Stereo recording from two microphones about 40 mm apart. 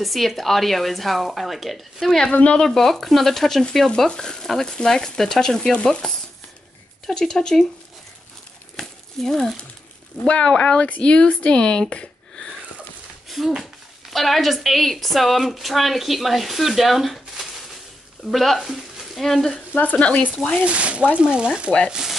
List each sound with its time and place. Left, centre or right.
0.0 s a woman's voice: centre
2.0 s speech: centre
8.7 s a sound: centre
10.2 s speech: left
13.4 s a woman's voice: centre
18.6 s sizzle: centre
19.5 s speech: left
20.6 s speech: right
21.7 s sizzle: centre